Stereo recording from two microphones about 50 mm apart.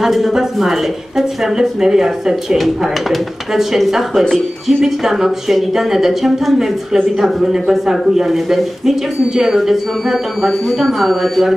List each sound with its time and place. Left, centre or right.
0.0 s a woman's voice: centre